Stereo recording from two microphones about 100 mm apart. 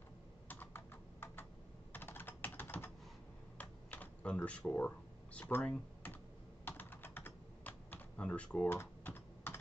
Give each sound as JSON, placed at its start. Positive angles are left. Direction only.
{"t": 0.5, "sound": "computer keyboard", "side_deg": 20}
{"t": 6.6, "sound": "typing", "side_deg": 20}